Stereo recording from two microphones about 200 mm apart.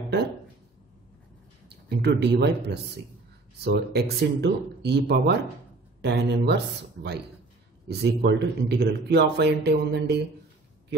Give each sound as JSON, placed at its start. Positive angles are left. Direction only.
{"t": 1.7, "sound": "speech", "side_deg": -55}